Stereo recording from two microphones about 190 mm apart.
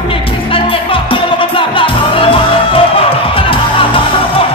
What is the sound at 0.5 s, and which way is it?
Music, 25° left (ahead or behind).